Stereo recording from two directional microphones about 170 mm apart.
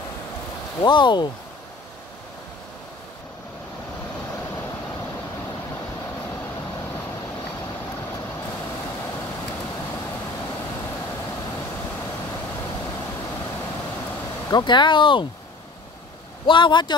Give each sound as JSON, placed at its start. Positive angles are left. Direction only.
{"t": 0.7, "sound": "speech", "side_deg": 25}
{"t": 14.5, "sound": "speech", "side_deg": 25}
{"t": 16.4, "sound": "speech", "side_deg": 30}